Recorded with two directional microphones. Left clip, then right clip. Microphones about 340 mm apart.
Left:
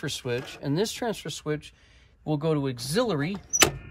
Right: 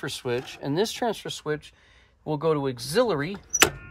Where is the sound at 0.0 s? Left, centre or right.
Centre.